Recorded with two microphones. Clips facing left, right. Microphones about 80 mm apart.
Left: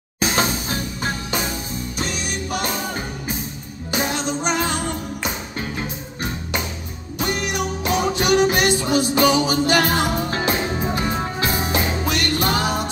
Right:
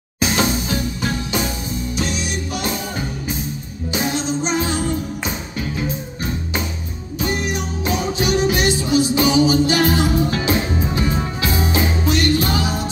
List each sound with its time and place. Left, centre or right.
0.4 s music: left
3.9 s music: left
7.2 s music: left